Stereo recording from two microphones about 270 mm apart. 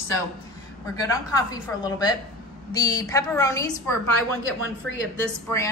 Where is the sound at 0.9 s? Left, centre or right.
Centre.